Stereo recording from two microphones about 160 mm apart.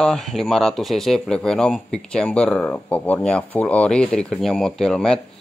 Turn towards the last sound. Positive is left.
turn(degrees=5)  # may be behind; listen again after turning